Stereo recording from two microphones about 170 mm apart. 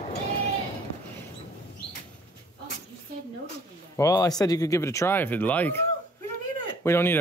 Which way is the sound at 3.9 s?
20° left (ahead or behind).